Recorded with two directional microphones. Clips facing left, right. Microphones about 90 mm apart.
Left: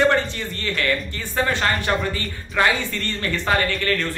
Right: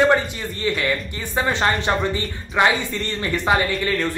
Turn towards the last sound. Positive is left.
turn(degrees=-15)  # may be behind; listen again after turning